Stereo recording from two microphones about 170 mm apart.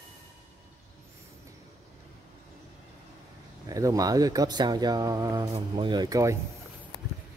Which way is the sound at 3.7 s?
20° right (ahead or behind).